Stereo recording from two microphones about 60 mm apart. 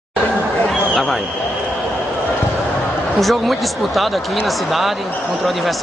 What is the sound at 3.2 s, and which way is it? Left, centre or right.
Speech, centre.